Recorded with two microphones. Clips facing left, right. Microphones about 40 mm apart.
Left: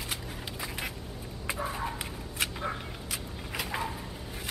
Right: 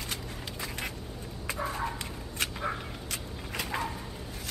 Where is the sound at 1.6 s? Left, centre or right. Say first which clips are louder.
Right 2 dB; centre.